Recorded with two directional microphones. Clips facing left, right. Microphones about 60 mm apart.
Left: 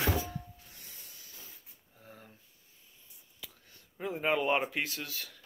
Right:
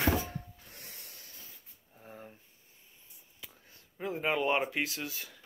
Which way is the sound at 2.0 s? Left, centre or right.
Right.